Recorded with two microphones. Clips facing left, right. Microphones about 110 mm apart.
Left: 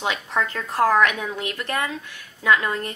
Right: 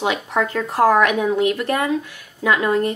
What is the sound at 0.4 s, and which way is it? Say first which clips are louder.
Speech: right 4 dB; 20° right (ahead or behind).